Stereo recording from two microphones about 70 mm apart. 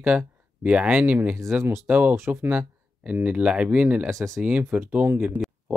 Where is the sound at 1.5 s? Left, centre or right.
Right.